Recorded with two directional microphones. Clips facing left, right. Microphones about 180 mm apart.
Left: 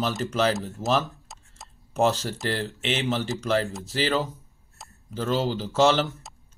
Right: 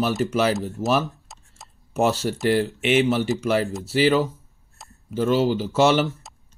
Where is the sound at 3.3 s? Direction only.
5° right (ahead or behind).